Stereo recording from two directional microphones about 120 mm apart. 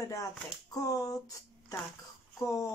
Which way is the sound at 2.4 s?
25° left (ahead or behind).